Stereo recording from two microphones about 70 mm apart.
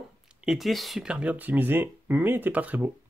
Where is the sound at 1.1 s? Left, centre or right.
Centre.